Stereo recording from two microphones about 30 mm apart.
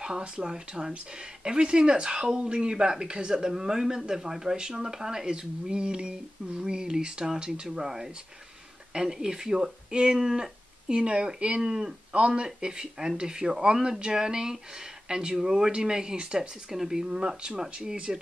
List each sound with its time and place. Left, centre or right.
0.5 s speech: right
11.1 s speech: right
11.6 s speech: right
12.1 s speech: right
12.4 s speech: right
15.7 s speech: right
16.7 s speech: centre
17.0 s speech: right